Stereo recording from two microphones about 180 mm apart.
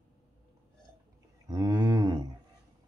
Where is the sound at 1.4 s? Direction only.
20° right (ahead or behind).